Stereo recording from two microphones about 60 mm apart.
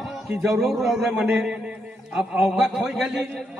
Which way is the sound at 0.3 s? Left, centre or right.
Centre.